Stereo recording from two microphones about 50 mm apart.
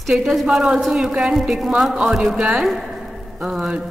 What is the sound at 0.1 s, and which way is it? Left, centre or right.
A man's voice, centre.